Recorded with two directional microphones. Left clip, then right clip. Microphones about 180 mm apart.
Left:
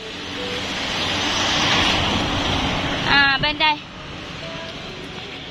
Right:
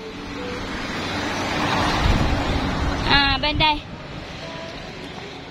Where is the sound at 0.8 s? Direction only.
65° right (ahead or behind); by 2.1 s 45° right (ahead or behind).